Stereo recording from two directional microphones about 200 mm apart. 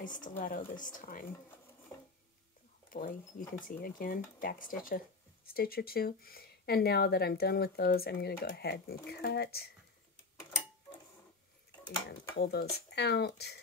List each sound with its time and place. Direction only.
0.0 s speech: 40° left (ahead or behind)
2.9 s speech: 45° left (ahead or behind)
12.1 s speech: 55° left (ahead or behind)